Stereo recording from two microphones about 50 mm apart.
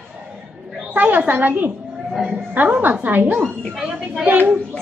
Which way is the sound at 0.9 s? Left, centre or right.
Right.